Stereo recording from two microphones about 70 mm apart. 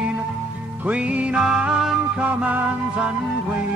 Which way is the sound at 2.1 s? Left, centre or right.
Centre.